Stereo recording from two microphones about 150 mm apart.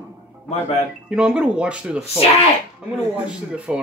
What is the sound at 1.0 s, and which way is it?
Speech, 5° right (ahead or behind).